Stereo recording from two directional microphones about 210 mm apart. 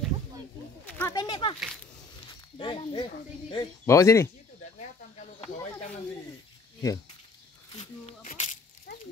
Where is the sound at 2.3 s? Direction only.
25° left (ahead or behind).